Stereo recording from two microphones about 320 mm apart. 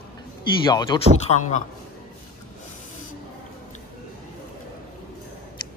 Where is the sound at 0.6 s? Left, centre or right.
Centre.